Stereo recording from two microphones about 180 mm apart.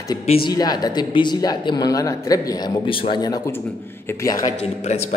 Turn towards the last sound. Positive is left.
turn(degrees=35)  # may be behind; listen again after turning